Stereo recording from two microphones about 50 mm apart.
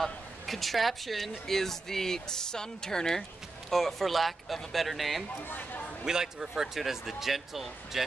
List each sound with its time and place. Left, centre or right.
0.0 s speech: centre
5.5 s speech: left
6.0 s speech: centre